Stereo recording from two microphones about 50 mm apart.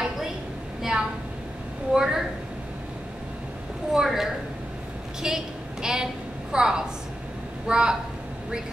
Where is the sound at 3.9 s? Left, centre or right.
Centre.